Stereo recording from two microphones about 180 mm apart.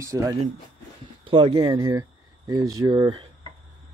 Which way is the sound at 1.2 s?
30° right (ahead or behind).